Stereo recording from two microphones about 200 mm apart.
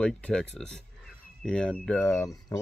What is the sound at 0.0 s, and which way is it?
Speech, 5° left (ahead or behind).